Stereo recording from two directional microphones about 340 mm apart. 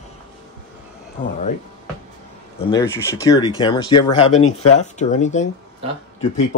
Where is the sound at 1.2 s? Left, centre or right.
Left.